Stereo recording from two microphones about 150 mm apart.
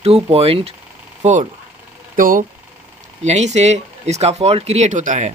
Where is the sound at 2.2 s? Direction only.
65° right (ahead or behind).